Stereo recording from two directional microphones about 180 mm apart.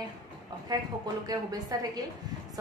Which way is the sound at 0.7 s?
25° right (ahead or behind).